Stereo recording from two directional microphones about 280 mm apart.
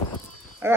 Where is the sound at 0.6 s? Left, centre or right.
Centre.